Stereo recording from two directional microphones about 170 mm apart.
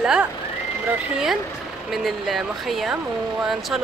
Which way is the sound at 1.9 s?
Centre (ahead or behind).